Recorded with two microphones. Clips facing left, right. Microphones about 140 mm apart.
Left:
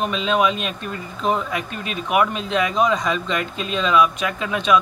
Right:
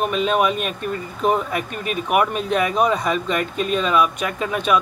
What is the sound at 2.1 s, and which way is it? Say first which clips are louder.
Speech: even; 50° right (ahead or behind).